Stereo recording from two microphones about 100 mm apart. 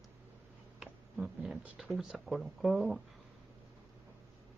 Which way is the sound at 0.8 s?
5° right (ahead or behind).